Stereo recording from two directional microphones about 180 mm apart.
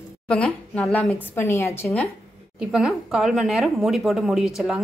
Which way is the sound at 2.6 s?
5° right (ahead or behind).